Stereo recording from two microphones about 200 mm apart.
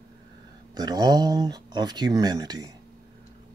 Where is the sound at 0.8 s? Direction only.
20° right (ahead or behind).